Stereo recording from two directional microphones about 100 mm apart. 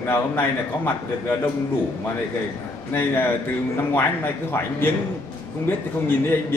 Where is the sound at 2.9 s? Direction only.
20° left (ahead or behind).